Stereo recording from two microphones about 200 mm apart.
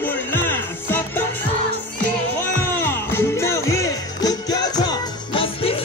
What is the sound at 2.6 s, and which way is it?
Music, 10° left (ahead or behind).